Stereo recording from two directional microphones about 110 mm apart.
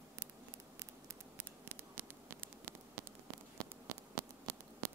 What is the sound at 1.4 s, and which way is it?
Static, 20° right (ahead or behind).